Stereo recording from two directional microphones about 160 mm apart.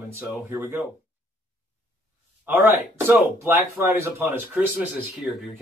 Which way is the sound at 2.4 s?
15° right (ahead or behind).